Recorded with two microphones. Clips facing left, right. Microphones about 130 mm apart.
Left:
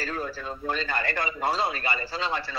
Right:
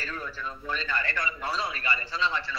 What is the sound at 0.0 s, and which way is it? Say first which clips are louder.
A man's voice: left 4 dB; 40° left (ahead or behind).